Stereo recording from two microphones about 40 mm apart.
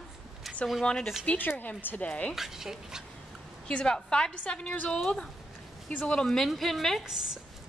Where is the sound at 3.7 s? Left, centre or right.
Left.